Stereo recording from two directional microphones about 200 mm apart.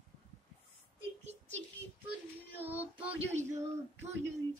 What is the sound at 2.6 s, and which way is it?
Speech, 10° right (ahead or behind).